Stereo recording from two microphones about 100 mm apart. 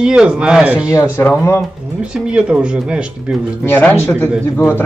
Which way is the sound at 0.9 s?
20° left (ahead or behind).